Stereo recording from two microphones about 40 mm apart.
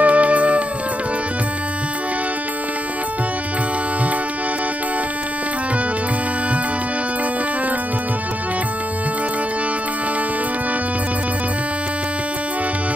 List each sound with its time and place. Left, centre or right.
0.0 s music: right